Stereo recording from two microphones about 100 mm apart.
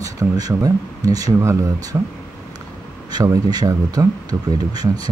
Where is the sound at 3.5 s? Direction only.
40° right (ahead or behind).